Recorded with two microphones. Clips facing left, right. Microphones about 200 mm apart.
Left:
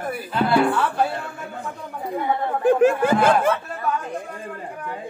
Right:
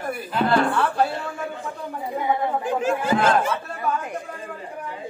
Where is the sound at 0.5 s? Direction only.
5° left (ahead or behind).